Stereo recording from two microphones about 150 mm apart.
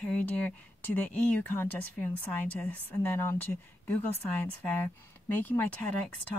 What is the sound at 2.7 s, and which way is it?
Speech, 15° left (ahead or behind).